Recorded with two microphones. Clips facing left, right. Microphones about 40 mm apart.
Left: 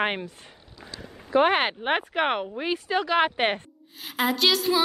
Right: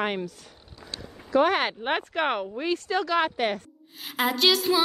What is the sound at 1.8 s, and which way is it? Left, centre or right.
Speech, centre.